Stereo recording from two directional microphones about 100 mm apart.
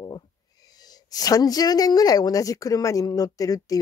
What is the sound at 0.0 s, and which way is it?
Speech, 40° left (ahead or behind).